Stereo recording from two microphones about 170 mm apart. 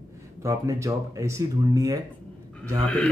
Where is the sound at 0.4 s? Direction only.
15° right (ahead or behind).